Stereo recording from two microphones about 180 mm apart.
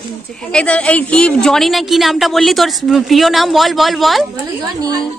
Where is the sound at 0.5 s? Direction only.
5° left (ahead or behind).